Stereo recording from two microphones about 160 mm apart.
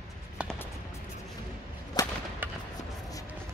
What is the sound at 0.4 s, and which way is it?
Music, 5° right (ahead or behind).